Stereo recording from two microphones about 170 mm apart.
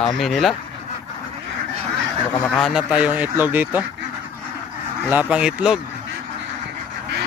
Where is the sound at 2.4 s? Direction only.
Centre (ahead or behind).